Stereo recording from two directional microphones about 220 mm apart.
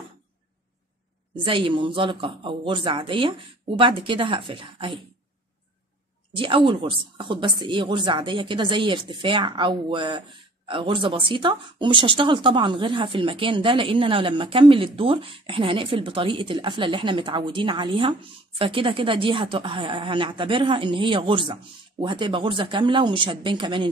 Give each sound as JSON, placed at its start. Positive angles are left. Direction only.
{"t": 1.3, "sound": "speech", "side_deg": -25}
{"t": 6.3, "sound": "speech", "side_deg": -25}